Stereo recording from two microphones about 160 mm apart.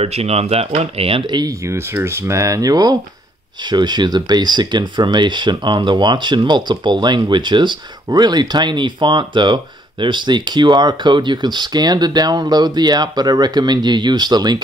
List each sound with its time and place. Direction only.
0.0 s speech: 40° right (ahead or behind)